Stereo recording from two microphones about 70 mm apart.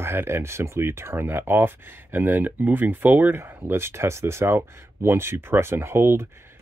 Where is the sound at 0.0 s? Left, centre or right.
Right.